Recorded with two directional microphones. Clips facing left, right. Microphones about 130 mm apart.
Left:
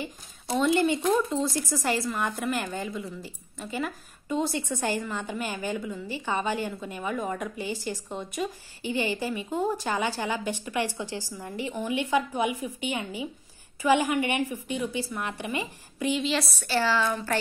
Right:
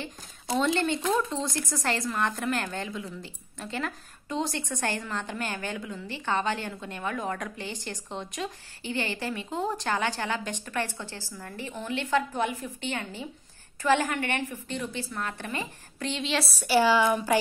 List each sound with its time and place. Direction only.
0.0 s a woman's voice: 5° left (ahead or behind)
16.6 s speech: 15° right (ahead or behind)